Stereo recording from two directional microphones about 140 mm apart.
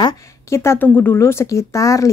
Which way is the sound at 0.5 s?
20° left (ahead or behind).